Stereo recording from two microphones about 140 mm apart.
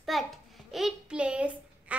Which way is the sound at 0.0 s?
Centre (ahead or behind).